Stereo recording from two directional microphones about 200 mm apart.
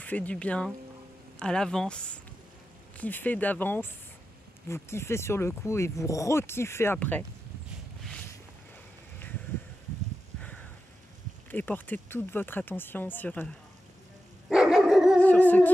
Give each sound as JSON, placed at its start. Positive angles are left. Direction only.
{"t": 0.0, "sound": "speech", "side_deg": 10}
{"t": 11.5, "sound": "speech", "side_deg": 10}
{"t": 14.5, "sound": "dog", "side_deg": -5}
{"t": 15.2, "sound": "speech", "side_deg": 10}